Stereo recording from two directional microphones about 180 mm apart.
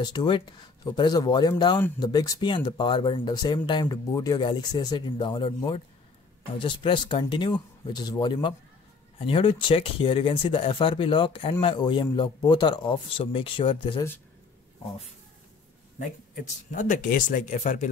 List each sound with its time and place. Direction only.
0.0 s a man's voice: 25° left (ahead or behind)
16.7 s speech: 45° left (ahead or behind)